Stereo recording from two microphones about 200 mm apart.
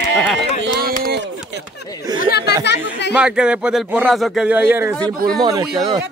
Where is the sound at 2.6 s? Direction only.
60° left (ahead or behind).